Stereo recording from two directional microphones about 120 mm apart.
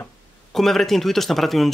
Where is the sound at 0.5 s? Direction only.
Centre (ahead or behind).